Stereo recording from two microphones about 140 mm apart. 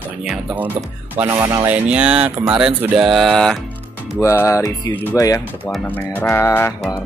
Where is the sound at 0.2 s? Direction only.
5° right (ahead or behind).